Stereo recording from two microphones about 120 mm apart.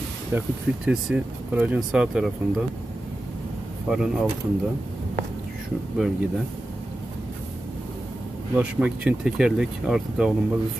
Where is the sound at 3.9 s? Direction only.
5° right (ahead or behind).